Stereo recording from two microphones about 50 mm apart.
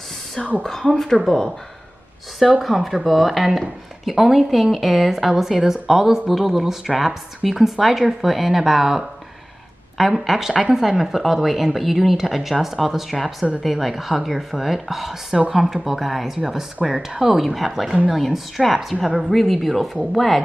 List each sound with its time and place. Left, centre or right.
2.6 s speech: centre
17.4 s speech: centre